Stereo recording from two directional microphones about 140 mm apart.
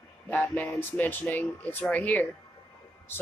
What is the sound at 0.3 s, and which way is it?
Speech, 10° left (ahead or behind).